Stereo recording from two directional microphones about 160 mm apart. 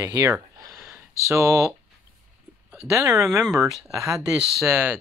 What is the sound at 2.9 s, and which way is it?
Speech, 20° right (ahead or behind).